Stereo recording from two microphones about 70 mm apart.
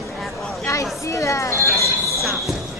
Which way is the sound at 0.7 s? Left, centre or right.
Left.